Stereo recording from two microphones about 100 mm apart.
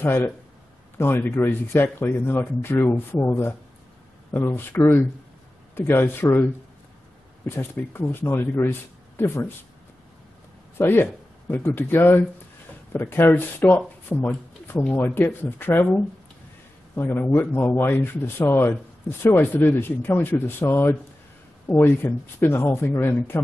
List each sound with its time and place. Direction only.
0.0 s speech: 20° left (ahead or behind)
7.4 s speech: 25° left (ahead or behind)
10.8 s speech: 25° left (ahead or behind)